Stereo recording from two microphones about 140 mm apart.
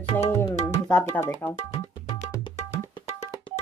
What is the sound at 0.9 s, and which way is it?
Music, 15° left (ahead or behind).